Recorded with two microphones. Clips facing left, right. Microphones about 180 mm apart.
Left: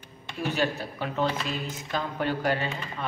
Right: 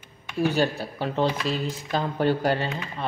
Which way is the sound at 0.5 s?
35° right (ahead or behind).